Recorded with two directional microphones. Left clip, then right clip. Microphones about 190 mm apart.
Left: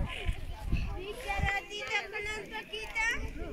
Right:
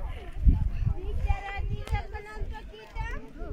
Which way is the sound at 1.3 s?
35° right (ahead or behind).